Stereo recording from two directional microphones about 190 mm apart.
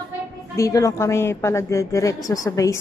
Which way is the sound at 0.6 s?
15° left (ahead or behind).